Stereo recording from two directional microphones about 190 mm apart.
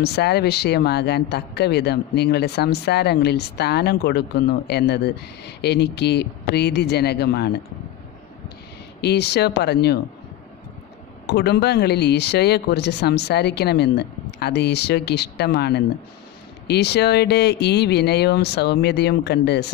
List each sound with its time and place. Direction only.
0.0 s speech: 60° left (ahead or behind)
9.0 s speech: 60° left (ahead or behind)
11.2 s speech: 60° left (ahead or behind)